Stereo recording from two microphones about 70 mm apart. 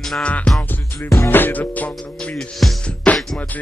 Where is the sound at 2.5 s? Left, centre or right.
Centre.